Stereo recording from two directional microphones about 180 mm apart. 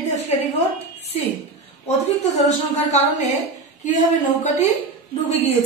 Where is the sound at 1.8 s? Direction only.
40° left (ahead or behind).